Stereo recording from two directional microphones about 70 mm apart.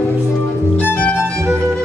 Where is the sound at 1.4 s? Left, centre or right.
Right.